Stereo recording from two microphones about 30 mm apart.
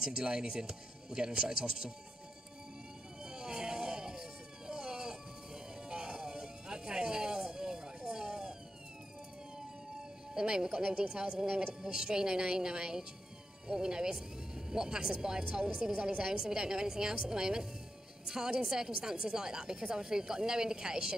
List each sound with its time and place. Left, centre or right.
0.0 s a woman's voice: right
3.2 s a sound: right
10.3 s a woman's voice: right
16.3 s a woman's voice: right